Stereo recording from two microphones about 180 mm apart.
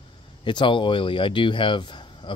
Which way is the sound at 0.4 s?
25° left (ahead or behind).